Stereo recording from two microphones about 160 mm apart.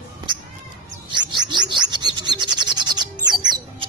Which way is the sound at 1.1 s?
25° right (ahead or behind).